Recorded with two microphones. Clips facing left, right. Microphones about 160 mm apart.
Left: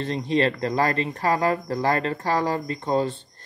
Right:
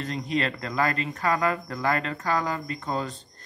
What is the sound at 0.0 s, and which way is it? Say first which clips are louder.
Speech: left 5 dB; 30° left (ahead or behind).